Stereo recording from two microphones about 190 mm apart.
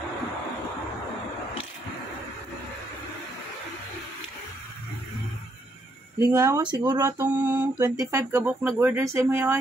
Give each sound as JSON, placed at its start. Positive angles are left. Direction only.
{"t": 6.1, "sound": "speech", "side_deg": -15}